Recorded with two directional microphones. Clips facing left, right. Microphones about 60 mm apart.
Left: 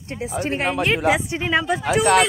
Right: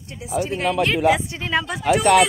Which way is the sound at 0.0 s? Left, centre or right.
Left.